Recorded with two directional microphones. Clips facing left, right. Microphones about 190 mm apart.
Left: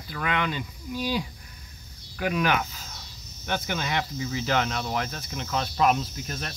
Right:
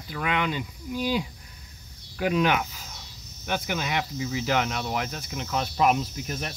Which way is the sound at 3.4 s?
10° right (ahead or behind).